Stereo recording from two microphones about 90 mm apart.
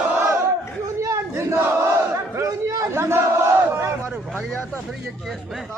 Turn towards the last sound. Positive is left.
turn(degrees=-30)  # may be behind; listen again after turning